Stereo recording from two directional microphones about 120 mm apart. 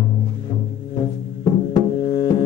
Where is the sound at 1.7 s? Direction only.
35° left (ahead or behind).